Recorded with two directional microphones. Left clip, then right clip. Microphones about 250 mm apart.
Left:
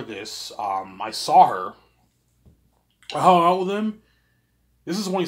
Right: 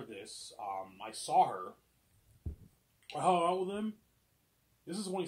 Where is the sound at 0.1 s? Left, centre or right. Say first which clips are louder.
Left 15 dB; centre.